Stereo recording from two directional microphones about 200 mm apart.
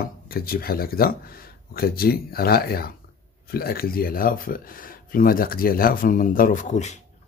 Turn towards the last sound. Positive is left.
turn(degrees=35)  # may be behind; listen again after turning